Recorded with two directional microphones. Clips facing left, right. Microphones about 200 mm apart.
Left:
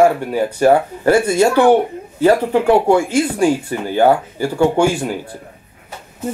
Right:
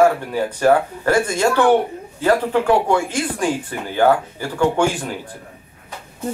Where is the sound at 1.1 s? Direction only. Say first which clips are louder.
Left 4 dB; 10° left (ahead or behind).